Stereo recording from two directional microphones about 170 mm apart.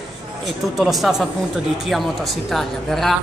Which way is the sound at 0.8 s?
Centre (ahead or behind).